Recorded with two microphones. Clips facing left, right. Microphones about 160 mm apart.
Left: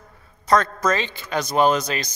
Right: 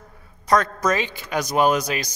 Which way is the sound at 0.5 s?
15° right (ahead or behind).